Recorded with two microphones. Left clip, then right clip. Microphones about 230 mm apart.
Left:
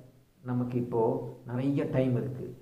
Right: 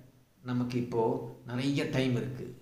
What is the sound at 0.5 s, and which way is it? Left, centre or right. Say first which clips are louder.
Speech: left 1 dB; centre.